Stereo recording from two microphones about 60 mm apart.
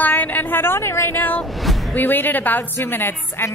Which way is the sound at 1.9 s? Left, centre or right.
Left.